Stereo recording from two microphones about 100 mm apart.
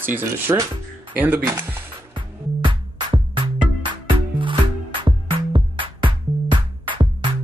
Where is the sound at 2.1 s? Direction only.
55° right (ahead or behind).